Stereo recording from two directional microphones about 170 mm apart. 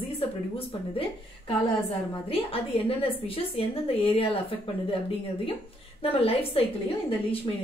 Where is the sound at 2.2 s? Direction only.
35° left (ahead or behind).